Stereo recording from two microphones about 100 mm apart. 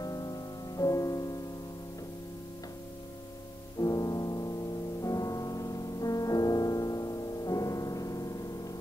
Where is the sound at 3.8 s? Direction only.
35° left (ahead or behind).